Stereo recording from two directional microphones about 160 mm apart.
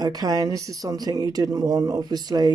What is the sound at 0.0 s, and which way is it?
Speech, 25° right (ahead or behind).